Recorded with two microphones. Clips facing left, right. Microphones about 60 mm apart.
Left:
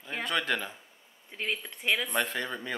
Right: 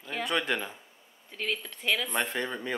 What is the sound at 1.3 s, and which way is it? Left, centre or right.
Speech, centre.